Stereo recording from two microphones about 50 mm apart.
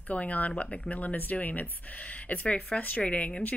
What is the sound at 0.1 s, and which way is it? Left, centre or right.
A woman's voice, left.